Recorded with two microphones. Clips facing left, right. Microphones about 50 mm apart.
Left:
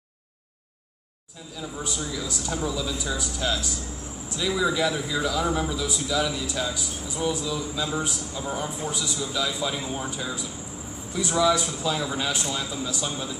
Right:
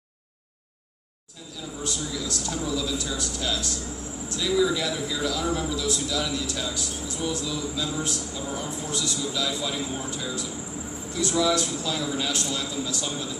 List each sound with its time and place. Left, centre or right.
1.8 s a man's voice: centre